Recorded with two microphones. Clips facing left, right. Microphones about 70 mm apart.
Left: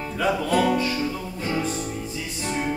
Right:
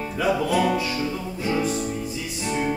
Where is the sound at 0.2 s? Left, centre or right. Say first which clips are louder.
Even; centre.